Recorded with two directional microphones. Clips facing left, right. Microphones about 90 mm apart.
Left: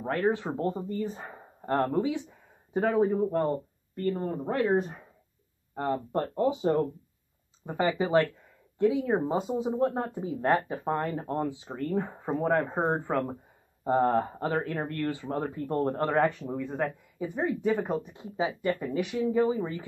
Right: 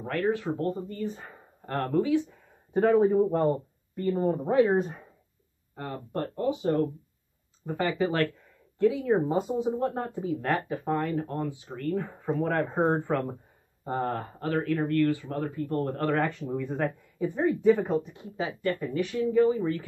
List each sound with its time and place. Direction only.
0.0 s speech: 25° left (ahead or behind)
1.0 s speech: 30° left (ahead or behind)
2.7 s speech: 5° left (ahead or behind)
3.9 s speech: 5° right (ahead or behind)
5.8 s speech: 30° left (ahead or behind)
7.8 s speech: 10° left (ahead or behind)
8.7 s speech: 20° left (ahead or behind)
10.2 s speech: 25° left (ahead or behind)
12.7 s speech: 5° left (ahead or behind)
13.8 s speech: 15° left (ahead or behind)
16.3 s speech: 10° left (ahead or behind)